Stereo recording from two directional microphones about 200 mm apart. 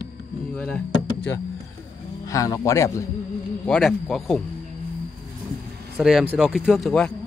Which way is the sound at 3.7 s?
Centre (ahead or behind).